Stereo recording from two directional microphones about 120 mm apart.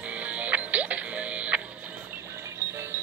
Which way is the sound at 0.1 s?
10° right (ahead or behind).